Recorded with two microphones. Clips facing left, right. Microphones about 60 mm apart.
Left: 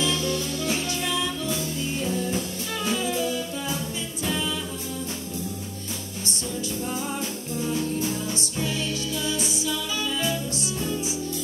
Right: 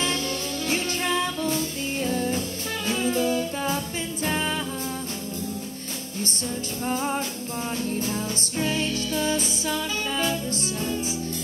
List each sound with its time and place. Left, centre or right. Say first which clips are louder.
0.0 s music: left 2 dB; right
6.9 s music: right 3 dB; right